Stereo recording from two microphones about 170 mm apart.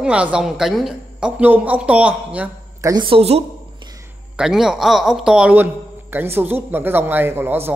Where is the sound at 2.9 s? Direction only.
30° right (ahead or behind).